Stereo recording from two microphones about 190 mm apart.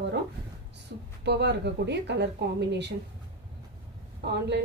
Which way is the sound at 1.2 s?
60° right (ahead or behind).